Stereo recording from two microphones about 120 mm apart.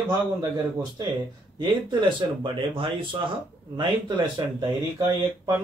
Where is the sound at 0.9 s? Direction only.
40° right (ahead or behind).